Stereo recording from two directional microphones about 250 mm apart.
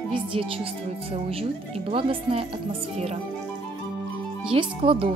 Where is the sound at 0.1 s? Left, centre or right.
Right.